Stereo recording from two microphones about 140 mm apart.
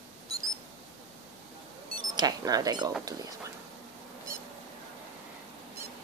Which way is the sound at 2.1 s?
30° right (ahead or behind).